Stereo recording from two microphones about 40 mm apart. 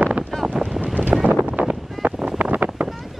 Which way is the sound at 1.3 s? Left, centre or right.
Right.